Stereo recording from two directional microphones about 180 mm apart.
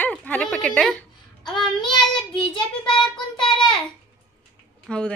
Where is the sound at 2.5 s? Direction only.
25° left (ahead or behind).